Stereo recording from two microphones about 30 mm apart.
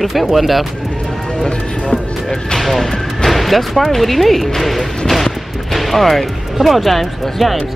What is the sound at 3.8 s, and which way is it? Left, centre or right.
Speech, centre.